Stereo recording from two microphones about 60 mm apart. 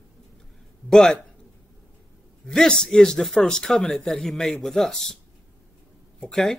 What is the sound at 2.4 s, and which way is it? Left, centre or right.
Speech, centre.